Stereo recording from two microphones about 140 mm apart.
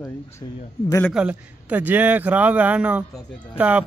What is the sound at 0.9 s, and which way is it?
Speech, 15° left (ahead or behind).